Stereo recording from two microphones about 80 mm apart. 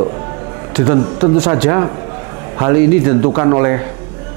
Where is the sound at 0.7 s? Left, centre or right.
Right.